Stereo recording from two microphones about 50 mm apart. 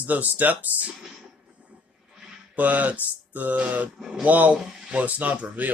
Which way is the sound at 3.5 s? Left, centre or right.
Right.